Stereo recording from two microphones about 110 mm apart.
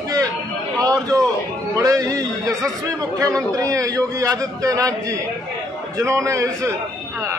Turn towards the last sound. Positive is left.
turn(degrees=-30)  # may be behind; listen again after turning